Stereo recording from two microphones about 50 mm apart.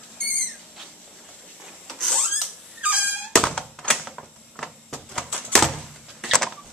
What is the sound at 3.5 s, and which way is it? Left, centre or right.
Thunk, centre.